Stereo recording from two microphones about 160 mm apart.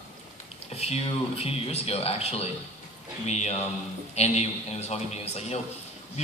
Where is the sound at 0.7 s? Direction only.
40° left (ahead or behind).